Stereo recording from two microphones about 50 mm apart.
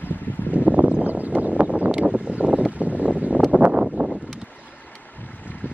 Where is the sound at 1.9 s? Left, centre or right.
Right.